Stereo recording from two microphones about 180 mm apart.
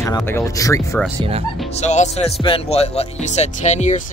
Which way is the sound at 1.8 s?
40° left (ahead or behind).